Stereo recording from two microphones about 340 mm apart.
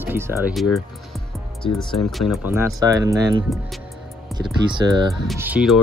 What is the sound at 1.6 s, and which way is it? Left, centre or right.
Speech, centre.